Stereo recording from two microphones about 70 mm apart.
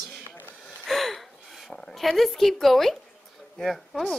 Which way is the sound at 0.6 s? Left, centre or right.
Centre.